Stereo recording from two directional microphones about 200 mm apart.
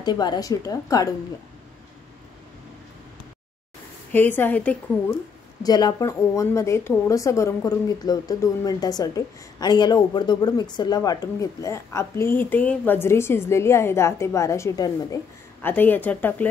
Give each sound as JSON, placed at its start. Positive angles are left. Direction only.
{"t": 0.0, "sound": "speech", "side_deg": 20}
{"t": 4.1, "sound": "speech", "side_deg": 10}
{"t": 5.6, "sound": "speech", "side_deg": 20}